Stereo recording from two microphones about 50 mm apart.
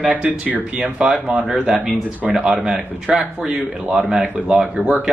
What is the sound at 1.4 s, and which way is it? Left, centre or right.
Speech, centre.